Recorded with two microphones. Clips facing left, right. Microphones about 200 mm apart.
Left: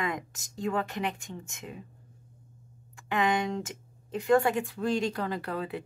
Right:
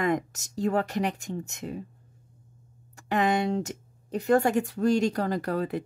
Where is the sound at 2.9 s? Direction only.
40° right (ahead or behind).